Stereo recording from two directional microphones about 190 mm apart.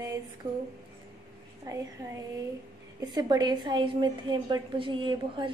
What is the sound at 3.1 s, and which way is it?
A woman's voice, 20° right (ahead or behind).